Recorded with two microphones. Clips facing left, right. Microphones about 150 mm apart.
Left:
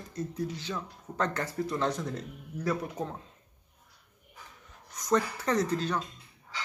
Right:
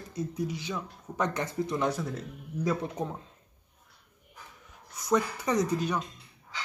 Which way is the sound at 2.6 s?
15° right (ahead or behind).